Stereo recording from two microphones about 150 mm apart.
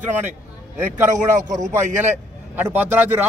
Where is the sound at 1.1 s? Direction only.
55° right (ahead or behind).